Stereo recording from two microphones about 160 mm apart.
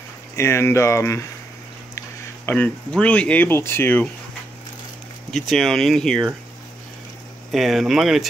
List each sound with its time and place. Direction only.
0.4 s speech: 15° left (ahead or behind)
5.3 s speech: centre (ahead or behind)
7.5 s speech: centre (ahead or behind)